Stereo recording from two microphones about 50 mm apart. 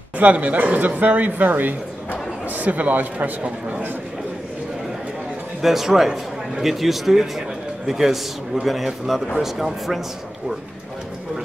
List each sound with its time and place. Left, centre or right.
0.2 s speech: right
5.6 s a man's voice: centre